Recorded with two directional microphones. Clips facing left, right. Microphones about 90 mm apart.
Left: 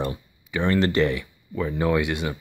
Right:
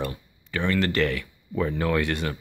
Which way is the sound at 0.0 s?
20° left (ahead or behind).